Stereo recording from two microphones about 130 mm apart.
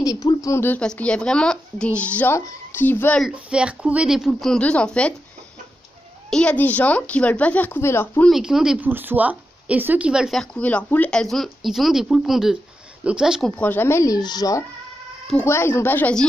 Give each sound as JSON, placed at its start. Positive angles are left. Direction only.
{"t": 0.0, "sound": "a woman's voice", "side_deg": 30}
{"t": 0.7, "sound": "speech", "side_deg": 10}
{"t": 3.2, "sound": "speech", "side_deg": -5}
{"t": 6.3, "sound": "speech", "side_deg": 10}
{"t": 8.3, "sound": "speech", "side_deg": -5}
{"t": 13.5, "sound": "speech", "side_deg": 15}
{"t": 14.1, "sound": "speech", "side_deg": 30}
{"t": 15.4, "sound": "speech", "side_deg": 20}